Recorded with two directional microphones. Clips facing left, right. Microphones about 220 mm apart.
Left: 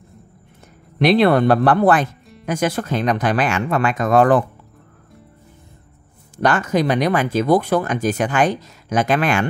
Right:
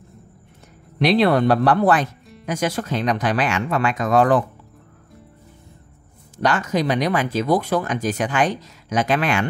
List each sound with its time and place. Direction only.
0.9 s speech: 55° left (ahead or behind)
6.3 s speech: 50° left (ahead or behind)